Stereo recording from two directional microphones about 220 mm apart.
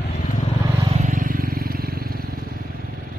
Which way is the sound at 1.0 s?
40° right (ahead or behind).